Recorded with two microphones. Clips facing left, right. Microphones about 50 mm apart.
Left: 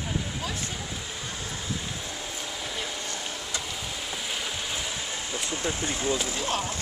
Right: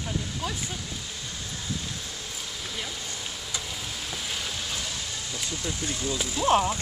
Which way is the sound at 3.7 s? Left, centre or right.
Centre.